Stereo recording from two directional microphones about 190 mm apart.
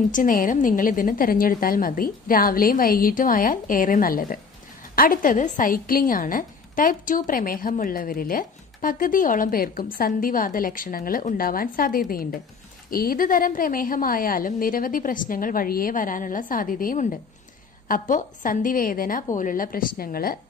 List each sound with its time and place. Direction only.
0.1 s a woman's voice: 45° left (ahead or behind)